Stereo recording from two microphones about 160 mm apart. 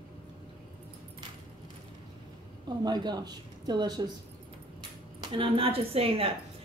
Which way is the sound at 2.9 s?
25° right (ahead or behind).